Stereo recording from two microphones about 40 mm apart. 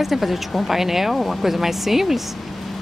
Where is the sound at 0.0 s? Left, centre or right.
Centre.